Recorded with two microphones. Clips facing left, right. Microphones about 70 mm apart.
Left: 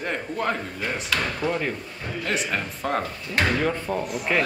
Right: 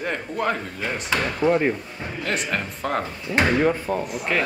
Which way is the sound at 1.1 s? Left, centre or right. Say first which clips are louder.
Right 7 dB; centre.